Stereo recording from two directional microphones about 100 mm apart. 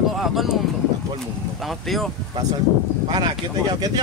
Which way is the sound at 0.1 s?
Centre (ahead or behind).